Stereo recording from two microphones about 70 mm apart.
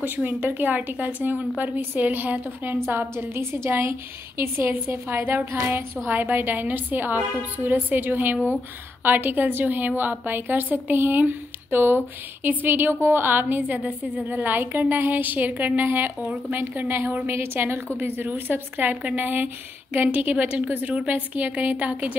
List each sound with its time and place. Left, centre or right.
0.0 s a woman's voice: right